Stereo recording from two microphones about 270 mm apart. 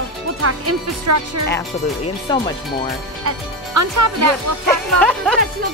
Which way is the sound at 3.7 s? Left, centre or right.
Right.